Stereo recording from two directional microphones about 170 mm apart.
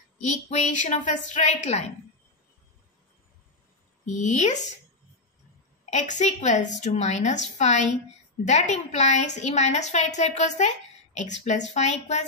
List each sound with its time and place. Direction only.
0.2 s a woman's voice: 40° left (ahead or behind)
4.0 s a woman's voice: 45° left (ahead or behind)
5.9 s a woman's voice: 45° left (ahead or behind)